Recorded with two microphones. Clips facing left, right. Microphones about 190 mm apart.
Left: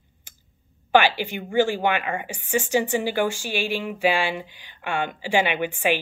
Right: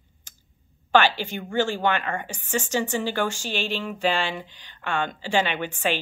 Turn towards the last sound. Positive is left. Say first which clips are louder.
# left 3 dB
turn(degrees=15)  # may be behind; listen again after turning